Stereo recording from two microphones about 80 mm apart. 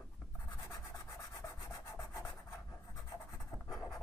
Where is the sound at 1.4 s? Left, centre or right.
Left.